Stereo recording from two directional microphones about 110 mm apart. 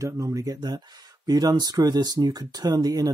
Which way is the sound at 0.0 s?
30° right (ahead or behind).